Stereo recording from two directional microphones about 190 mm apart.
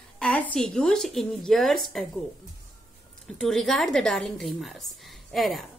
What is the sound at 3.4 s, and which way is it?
A woman's voice, centre (ahead or behind).